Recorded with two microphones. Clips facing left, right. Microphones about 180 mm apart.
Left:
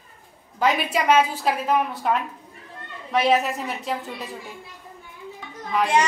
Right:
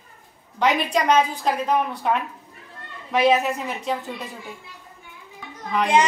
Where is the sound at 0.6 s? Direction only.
5° left (ahead or behind).